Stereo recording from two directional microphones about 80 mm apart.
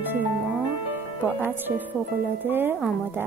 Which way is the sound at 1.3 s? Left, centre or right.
Right.